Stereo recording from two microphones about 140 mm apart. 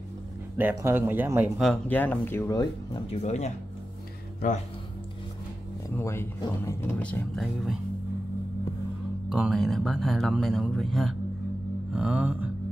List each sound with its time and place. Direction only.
0.6 s speech: 15° right (ahead or behind)
1.6 s speech: 10° left (ahead or behind)
2.5 s speech: 30° left (ahead or behind)
3.1 s speech: 55° left (ahead or behind)
4.4 s speech: 70° left (ahead or behind)
5.9 s speech: 20° left (ahead or behind)
7.0 s speech: 10° left (ahead or behind)
9.3 s speech: 5° right (ahead or behind)